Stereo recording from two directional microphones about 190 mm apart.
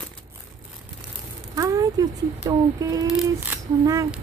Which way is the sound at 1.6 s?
20° right (ahead or behind).